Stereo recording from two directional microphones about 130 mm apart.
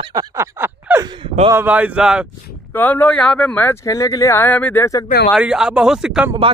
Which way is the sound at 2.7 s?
15° left (ahead or behind).